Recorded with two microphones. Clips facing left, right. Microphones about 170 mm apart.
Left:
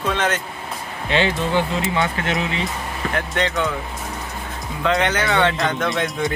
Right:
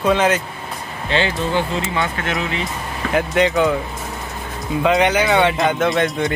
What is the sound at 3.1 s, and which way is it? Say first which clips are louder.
Speech: right 7 dB; 10° right (ahead or behind).